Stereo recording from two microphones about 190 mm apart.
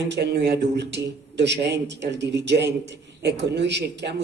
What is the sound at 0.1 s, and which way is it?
Speech, 65° right (ahead or behind).